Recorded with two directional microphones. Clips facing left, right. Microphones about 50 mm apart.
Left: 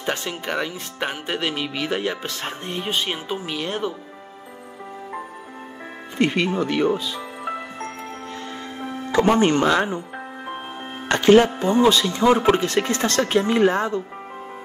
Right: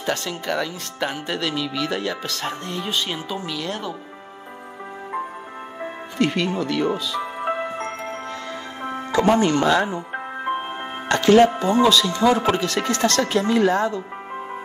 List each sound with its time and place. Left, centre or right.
0.0 s speech: left
6.1 s speech: left
7.2 s music: right
9.1 s speech: left
9.9 s music: right
11.1 s music: left
11.8 s speech: left